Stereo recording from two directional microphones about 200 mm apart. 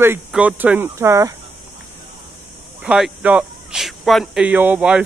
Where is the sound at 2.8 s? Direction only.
5° right (ahead or behind).